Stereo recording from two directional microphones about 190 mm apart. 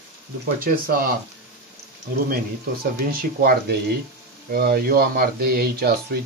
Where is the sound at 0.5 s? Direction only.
50° right (ahead or behind).